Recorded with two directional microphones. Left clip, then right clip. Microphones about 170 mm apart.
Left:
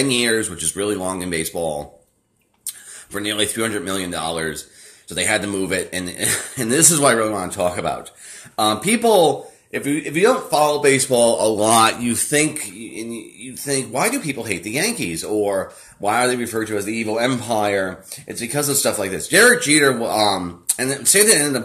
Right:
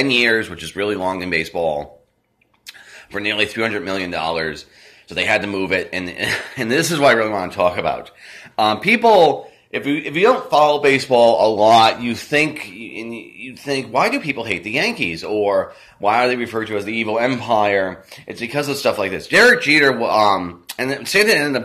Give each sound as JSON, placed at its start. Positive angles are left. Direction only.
{"t": 0.0, "sound": "speech", "side_deg": 25}
{"t": 2.6, "sound": "a sound", "side_deg": 30}
{"t": 3.5, "sound": "speech", "side_deg": 30}